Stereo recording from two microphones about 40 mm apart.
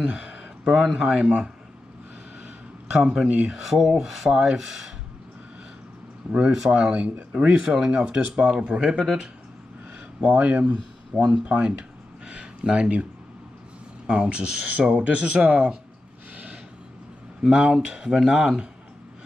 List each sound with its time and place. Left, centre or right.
0.0 s speech: right
3.0 s speech: right
3.5 s speech: centre
6.4 s speech: centre
6.7 s speech: right
8.6 s speech: right
10.2 s speech: right
12.3 s a sound: right
14.0 s speech: right
17.4 s speech: right